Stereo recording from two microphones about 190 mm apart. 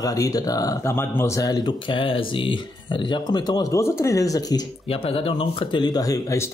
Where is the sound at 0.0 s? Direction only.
20° left (ahead or behind).